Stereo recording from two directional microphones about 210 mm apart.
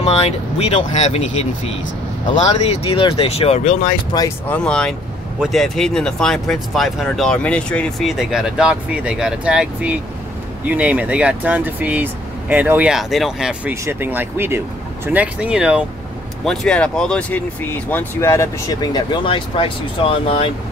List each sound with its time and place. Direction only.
0.0 s speech: 30° left (ahead or behind)
4.1 s speech: 20° left (ahead or behind)
4.5 s speech: 5° left (ahead or behind); by 20.5 s 30° left (ahead or behind)